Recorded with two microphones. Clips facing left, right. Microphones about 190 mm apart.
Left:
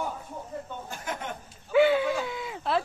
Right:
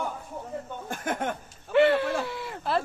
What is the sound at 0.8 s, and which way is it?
Speech, 50° right (ahead or behind).